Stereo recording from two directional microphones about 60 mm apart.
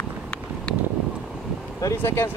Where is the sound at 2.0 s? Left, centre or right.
Left.